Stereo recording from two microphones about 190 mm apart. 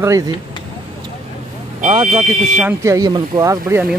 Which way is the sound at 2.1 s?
10° right (ahead or behind).